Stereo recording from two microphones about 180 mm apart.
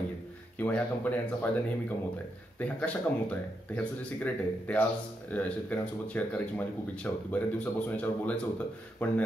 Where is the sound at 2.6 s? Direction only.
10° left (ahead or behind).